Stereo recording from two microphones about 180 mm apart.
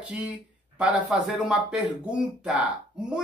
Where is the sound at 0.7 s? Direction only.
5° right (ahead or behind).